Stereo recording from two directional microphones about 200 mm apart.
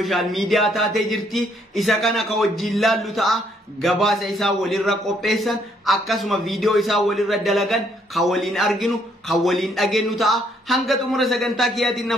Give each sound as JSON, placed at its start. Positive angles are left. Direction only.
{"t": 0.0, "sound": "a man's voice", "side_deg": 0}